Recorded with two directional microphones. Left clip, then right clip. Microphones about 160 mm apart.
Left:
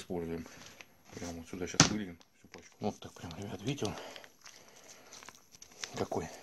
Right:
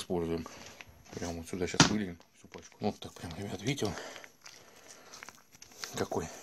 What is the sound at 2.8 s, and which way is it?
Speech, 5° right (ahead or behind).